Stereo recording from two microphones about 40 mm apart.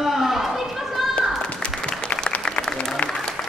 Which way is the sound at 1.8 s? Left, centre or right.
Left.